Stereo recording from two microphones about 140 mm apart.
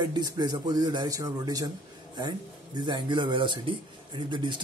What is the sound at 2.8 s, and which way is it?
Speech, 35° right (ahead or behind).